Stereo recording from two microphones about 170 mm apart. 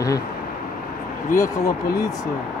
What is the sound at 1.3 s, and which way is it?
Speech, 20° left (ahead or behind).